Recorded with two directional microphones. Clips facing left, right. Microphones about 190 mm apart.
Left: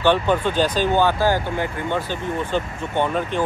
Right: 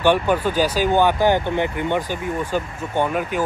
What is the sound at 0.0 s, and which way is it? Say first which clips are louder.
Speech: right 1 dB; 10° right (ahead or behind).